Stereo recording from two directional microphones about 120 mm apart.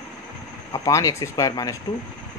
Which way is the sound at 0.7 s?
25° left (ahead or behind).